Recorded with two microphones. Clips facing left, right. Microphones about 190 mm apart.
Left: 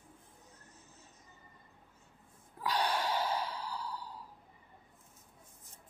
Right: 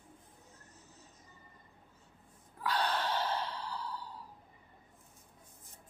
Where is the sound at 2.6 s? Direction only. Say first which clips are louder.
Even; 15° left (ahead or behind).